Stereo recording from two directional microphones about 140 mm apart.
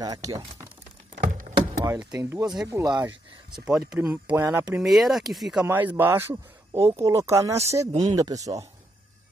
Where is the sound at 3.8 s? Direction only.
15° right (ahead or behind).